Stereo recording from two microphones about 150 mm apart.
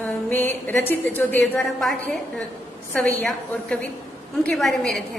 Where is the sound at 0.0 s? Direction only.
10° left (ahead or behind).